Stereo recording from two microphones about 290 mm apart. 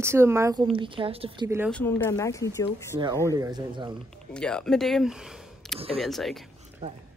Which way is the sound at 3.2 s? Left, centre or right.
Centre.